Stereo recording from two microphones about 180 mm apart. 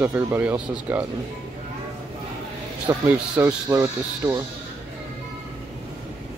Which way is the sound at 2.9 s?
15° right (ahead or behind).